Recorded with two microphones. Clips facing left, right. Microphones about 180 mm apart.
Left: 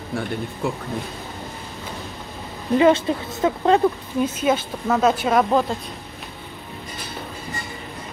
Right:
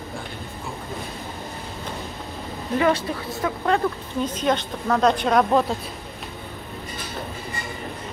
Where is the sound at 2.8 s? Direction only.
20° left (ahead or behind).